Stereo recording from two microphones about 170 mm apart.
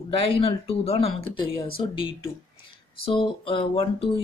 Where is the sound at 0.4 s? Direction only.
35° left (ahead or behind).